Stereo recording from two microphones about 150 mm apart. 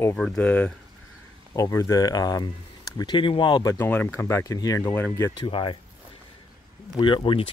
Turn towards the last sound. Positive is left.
turn(degrees=35)  # may be behind; listen again after turning